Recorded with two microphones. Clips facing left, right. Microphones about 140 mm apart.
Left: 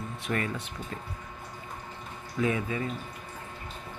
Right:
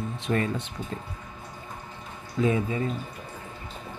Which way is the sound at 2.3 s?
25° right (ahead or behind).